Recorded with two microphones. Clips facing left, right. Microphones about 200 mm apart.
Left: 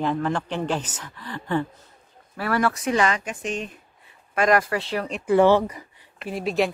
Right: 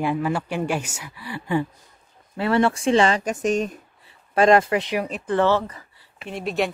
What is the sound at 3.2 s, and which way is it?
Speech, 45° right (ahead or behind).